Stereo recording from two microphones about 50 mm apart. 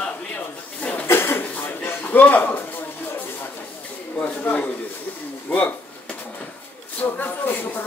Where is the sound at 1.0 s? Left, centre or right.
Left.